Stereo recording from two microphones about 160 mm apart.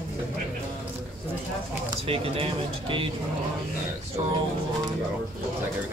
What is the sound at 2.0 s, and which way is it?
Speech, 35° right (ahead or behind).